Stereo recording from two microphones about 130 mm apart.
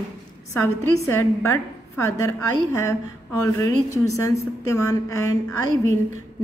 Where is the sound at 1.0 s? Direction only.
20° left (ahead or behind).